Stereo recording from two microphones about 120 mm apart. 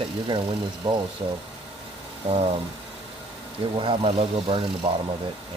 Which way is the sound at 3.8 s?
45° right (ahead or behind).